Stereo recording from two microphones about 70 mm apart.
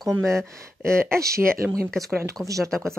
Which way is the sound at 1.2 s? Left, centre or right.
Right.